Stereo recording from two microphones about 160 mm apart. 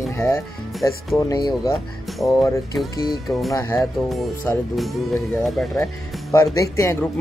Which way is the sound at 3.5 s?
20° left (ahead or behind).